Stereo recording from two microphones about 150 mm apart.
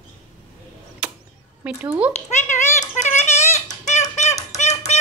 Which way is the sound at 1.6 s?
10° right (ahead or behind).